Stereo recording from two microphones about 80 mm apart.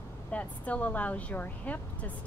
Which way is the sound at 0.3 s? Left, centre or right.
Centre.